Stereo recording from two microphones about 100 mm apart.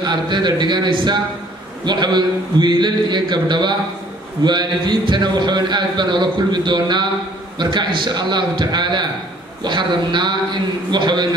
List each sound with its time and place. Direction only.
0.0 s speech: 50° right (ahead or behind)